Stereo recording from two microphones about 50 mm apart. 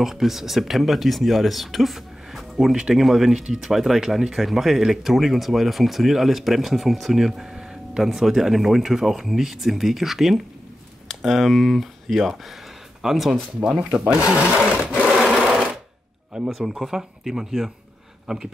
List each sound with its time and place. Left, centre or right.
0.0 s speech: centre
14.6 s sewing machine: right
16.4 s speech: centre